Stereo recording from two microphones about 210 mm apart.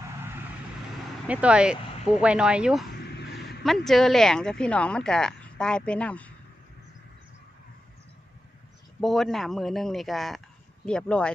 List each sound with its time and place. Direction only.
1.2 s speech: 5° right (ahead or behind)
9.0 s speech: centre (ahead or behind)